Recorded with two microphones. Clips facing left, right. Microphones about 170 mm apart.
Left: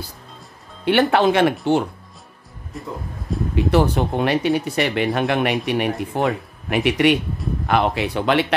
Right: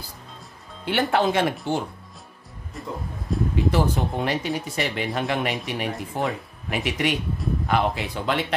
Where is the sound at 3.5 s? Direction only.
65° left (ahead or behind).